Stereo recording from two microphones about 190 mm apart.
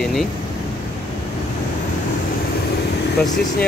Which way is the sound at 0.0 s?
Centre (ahead or behind).